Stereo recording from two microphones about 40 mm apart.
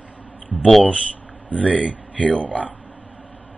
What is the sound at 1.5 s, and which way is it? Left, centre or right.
Speech, left.